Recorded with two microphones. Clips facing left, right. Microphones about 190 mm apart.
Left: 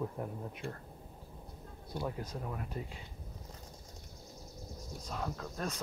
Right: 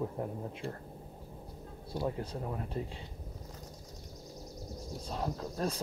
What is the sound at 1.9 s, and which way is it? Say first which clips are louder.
Speech: right 4 dB; 25° right (ahead or behind).